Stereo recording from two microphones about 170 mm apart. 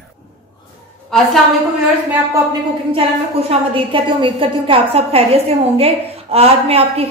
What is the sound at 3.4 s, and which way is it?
A woman's voice, 35° right (ahead or behind).